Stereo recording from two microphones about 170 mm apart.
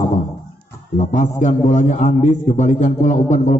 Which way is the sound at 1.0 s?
45° left (ahead or behind).